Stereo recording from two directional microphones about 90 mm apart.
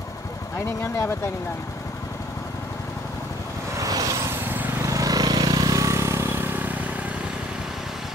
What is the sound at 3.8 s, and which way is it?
Vehicle, 40° right (ahead or behind).